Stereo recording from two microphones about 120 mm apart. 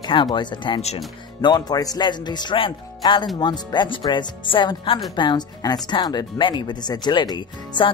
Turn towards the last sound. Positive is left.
turn(degrees=40)  # may be behind; listen again after turning